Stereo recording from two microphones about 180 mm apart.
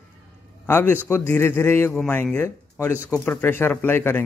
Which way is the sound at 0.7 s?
10° left (ahead or behind).